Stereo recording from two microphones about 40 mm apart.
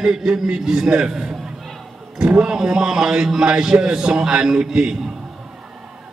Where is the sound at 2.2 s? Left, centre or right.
Right.